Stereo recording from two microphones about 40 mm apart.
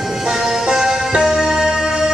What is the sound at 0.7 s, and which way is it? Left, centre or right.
Music, centre.